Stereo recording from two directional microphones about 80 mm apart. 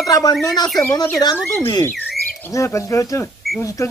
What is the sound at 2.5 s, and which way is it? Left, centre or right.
Speech, left.